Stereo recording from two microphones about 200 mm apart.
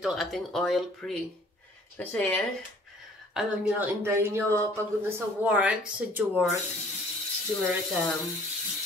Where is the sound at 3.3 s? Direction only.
10° right (ahead or behind).